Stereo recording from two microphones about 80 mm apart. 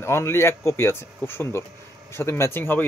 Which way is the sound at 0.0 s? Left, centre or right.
Left.